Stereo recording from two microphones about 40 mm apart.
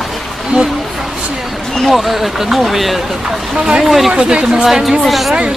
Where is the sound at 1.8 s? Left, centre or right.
Centre.